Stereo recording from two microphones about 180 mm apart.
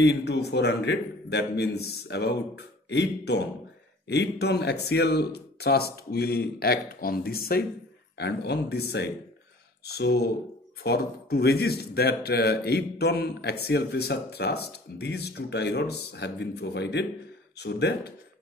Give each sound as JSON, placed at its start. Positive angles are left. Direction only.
{"t": 0.0, "sound": "a man's voice", "side_deg": 70}